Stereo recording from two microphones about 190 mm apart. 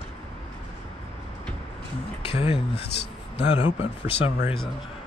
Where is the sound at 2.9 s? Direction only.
60° left (ahead or behind).